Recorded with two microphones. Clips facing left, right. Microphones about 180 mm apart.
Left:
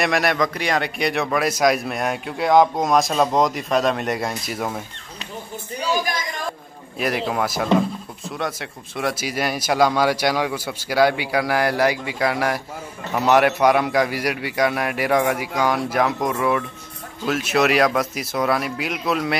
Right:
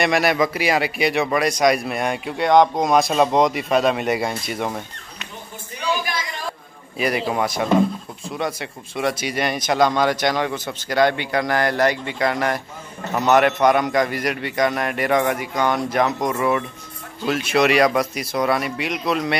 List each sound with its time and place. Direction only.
0.0 s a man's voice: centre (ahead or behind)
5.8 s a sound: 40° left (ahead or behind)
7.0 s a man's voice: centre (ahead or behind)